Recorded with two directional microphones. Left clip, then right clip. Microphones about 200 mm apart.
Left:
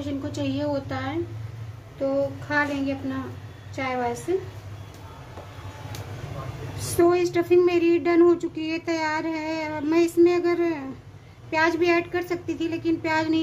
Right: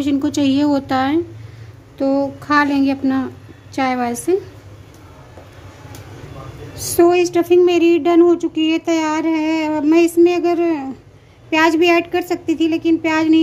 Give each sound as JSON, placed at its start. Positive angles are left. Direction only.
{"t": 0.0, "sound": "a woman's voice", "side_deg": -50}
{"t": 2.0, "sound": "a sound", "side_deg": -55}
{"t": 7.0, "sound": "speech", "side_deg": -35}